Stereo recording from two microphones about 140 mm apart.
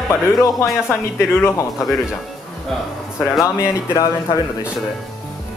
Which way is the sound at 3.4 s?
25° left (ahead or behind).